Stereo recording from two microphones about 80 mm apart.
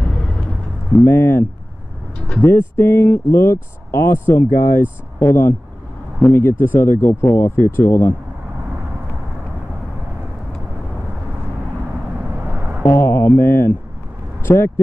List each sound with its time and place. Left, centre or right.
1.0 s speech: left
2.1 s speech: centre
2.4 s speech: left
12.4 s vehicle: centre
12.8 s speech: left
14.4 s vehicle: left